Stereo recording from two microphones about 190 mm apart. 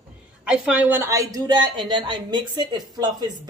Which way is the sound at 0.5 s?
10° right (ahead or behind).